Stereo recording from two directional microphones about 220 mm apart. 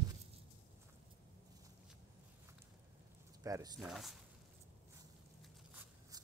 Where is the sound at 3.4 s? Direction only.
15° right (ahead or behind).